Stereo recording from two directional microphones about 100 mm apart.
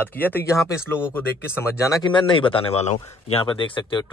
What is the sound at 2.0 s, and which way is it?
Speech, 55° left (ahead or behind).